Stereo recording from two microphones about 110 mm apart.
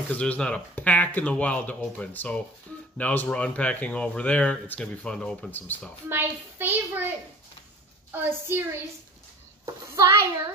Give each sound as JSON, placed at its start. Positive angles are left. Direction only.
{"t": 0.1, "sound": "speech", "side_deg": 10}
{"t": 6.0, "sound": "a child's voice", "side_deg": -20}
{"t": 8.1, "sound": "a woman's voice", "side_deg": -20}
{"t": 9.8, "sound": "a child's voice", "side_deg": -30}